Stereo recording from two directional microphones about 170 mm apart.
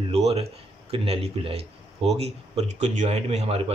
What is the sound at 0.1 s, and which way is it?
A man's voice, 35° right (ahead or behind).